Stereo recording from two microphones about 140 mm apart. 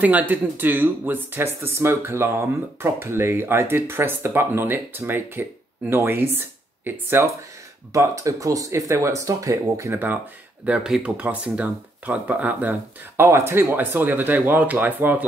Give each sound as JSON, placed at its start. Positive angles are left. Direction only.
{"t": 0.0, "sound": "speech", "side_deg": -10}